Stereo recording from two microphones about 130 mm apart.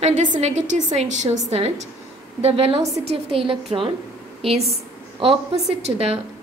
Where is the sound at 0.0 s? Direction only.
65° right (ahead or behind).